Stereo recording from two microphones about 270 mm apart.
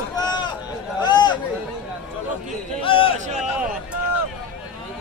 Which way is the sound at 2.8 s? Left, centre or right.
Centre.